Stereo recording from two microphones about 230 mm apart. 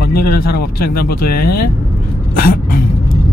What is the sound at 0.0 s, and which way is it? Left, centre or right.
Speech, left.